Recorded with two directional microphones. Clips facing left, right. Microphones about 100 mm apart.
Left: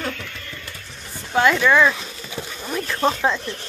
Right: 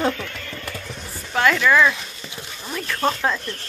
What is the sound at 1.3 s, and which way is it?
Speech, 15° left (ahead or behind).